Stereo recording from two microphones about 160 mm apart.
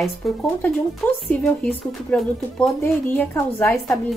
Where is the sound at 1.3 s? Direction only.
5° left (ahead or behind).